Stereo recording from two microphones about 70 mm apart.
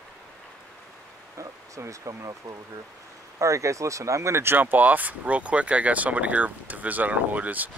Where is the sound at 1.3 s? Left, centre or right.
Right.